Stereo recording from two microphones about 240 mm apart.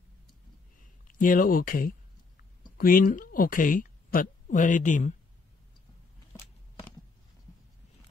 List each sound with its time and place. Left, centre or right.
1.0 s a woman's voice: left